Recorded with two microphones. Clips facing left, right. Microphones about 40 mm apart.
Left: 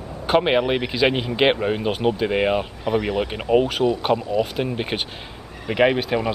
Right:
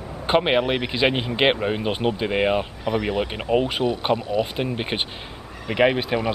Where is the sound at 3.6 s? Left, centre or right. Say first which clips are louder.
Left 2 dB; centre.